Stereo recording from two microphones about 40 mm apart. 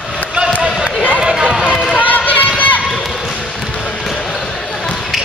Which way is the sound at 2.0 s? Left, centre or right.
Left.